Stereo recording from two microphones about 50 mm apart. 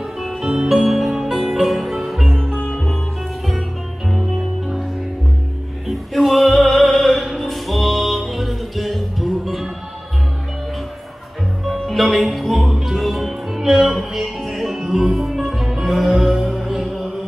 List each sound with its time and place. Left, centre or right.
0.2 s music: centre
0.5 s music: centre
2.6 s music: centre
5.9 s music: centre
11.6 s music: centre